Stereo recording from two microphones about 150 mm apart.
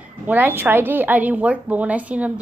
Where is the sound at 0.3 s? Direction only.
10° right (ahead or behind).